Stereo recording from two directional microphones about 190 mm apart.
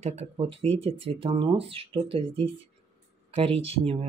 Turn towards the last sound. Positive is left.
turn(degrees=-30)  # may be behind; listen again after turning